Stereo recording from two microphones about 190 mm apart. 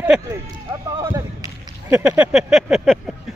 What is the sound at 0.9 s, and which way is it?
Whip, 20° right (ahead or behind).